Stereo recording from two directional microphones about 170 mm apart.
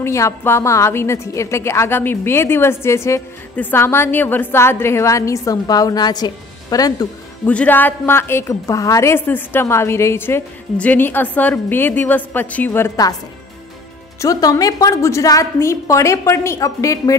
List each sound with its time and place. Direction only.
0.0 s a woman's voice: 15° left (ahead or behind)
7.4 s a woman's voice: 10° left (ahead or behind)
14.2 s a woman's voice: 20° left (ahead or behind)